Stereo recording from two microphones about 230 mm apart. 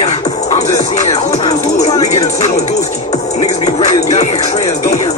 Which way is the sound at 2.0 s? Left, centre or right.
Left.